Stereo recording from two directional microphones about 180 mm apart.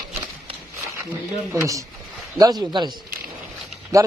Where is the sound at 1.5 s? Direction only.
15° right (ahead or behind).